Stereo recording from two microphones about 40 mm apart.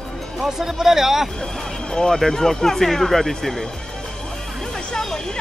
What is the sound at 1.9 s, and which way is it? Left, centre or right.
Speech, centre.